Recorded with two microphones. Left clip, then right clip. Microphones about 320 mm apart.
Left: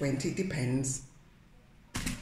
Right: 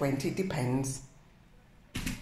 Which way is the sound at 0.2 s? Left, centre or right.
Centre.